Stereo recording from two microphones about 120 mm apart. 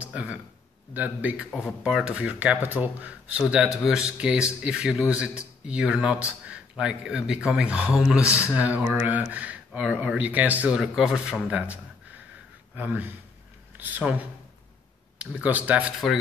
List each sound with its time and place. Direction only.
0.0 s speech: 10° right (ahead or behind)
10.8 s speech: centre (ahead or behind)